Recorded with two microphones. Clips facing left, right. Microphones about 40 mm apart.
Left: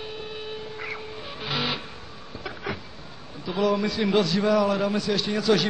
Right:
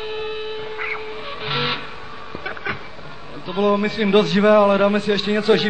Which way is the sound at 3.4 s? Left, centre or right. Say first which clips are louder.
Right 5 dB; right.